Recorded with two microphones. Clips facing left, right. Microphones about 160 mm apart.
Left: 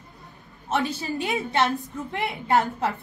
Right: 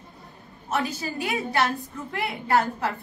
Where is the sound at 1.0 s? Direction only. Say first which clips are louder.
Left 1 dB; 25° left (ahead or behind).